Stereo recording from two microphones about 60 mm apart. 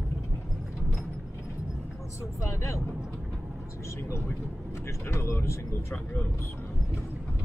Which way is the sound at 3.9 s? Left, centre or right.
Left.